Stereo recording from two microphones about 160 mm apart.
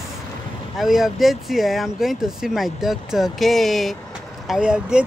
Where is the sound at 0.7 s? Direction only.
Centre (ahead or behind).